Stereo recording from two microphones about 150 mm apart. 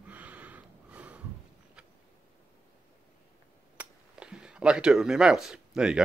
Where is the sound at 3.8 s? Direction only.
5° right (ahead or behind).